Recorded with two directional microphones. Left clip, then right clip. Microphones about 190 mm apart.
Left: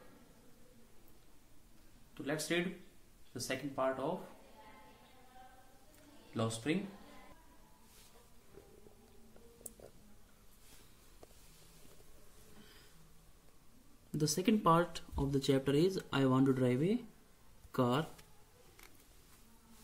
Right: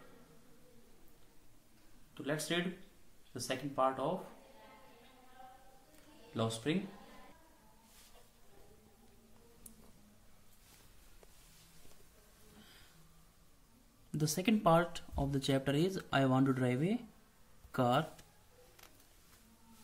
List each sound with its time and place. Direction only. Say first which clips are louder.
2.1 s speech: even; centre (ahead or behind)
6.3 s speech: right 1 dB; 5° right (ahead or behind)
14.1 s speech: left 1 dB; 15° right (ahead or behind)